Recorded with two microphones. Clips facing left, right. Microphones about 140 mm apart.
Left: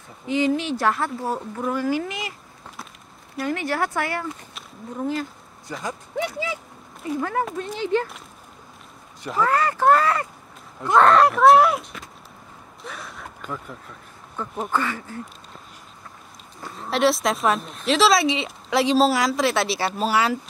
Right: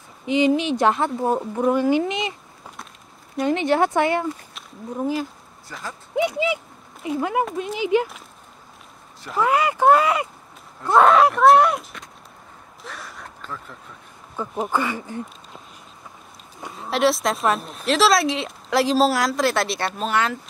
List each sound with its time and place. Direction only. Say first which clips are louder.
0.3 s speech: right 3 dB; 20° right (ahead or behind)
3.4 s speech: right 6 dB; 20° right (ahead or behind)
4.9 s speech: right 2 dB; 5° right (ahead or behind)
5.7 s speech: left 5 dB; 20° left (ahead or behind)
6.1 s speech: right 7 dB; 20° right (ahead or behind)
7.4 s speech: right 2 dB; 5° right (ahead or behind)
9.4 s speech: right 2 dB; 10° right (ahead or behind)
10.9 s speech: right 1 dB; centre (ahead or behind)
12.8 s a sound: left 1 dB; centre (ahead or behind)
13.4 s speech: left 4 dB; 10° left (ahead or behind)
14.3 s speech: right 2 dB; 5° right (ahead or behind)
16.7 s speech: even; centre (ahead or behind)